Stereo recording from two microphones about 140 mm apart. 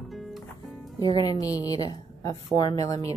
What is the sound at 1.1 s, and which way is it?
A woman's voice, 25° left (ahead or behind).